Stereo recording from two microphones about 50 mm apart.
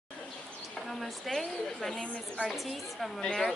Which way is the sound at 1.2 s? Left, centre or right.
Centre.